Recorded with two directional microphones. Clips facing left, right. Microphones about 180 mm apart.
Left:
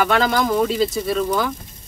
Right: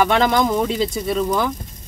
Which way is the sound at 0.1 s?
10° right (ahead or behind).